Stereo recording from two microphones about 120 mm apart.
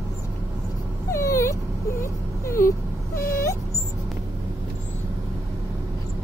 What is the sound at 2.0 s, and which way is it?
Whimper, 25° left (ahead or behind).